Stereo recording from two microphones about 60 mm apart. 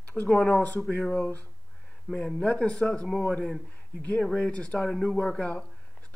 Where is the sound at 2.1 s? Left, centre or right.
Centre.